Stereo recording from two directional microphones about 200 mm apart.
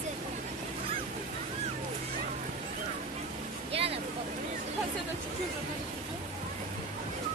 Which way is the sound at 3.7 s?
30° right (ahead or behind).